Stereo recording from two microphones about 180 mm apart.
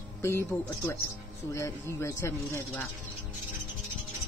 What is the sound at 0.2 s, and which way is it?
Speech, 15° left (ahead or behind).